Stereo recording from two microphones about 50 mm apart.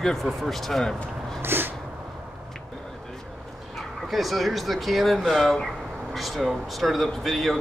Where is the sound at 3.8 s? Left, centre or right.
Centre.